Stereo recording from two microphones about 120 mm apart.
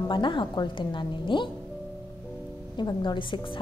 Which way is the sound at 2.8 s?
40° left (ahead or behind).